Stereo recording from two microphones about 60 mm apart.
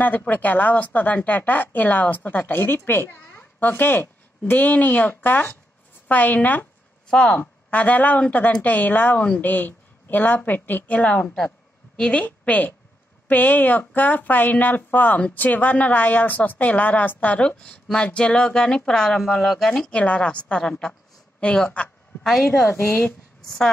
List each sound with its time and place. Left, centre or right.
0.0 s speech: left
7.1 s speech: centre
7.3 s a woman's voice: left; by 19.8 s centre
19.8 s speech: centre
20.6 s speech: centre
22.2 s a woman's voice: centre
22.7 s speech: left